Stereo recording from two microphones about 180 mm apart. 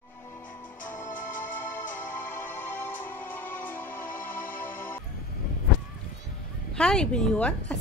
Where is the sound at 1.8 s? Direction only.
45° left (ahead or behind).